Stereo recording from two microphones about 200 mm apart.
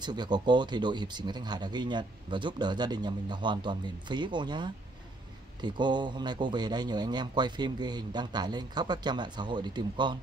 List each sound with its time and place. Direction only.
0.0 s speech: 20° right (ahead or behind)